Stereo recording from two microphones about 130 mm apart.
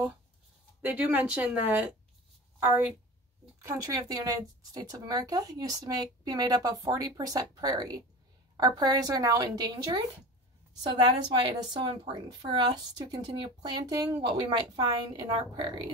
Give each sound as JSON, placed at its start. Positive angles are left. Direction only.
{"t": 0.8, "sound": "speech", "side_deg": -10}
{"t": 3.6, "sound": "speech", "side_deg": -25}
{"t": 10.9, "sound": "speech", "side_deg": -35}